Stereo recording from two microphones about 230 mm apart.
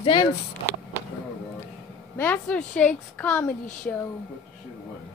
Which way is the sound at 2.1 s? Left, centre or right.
Centre.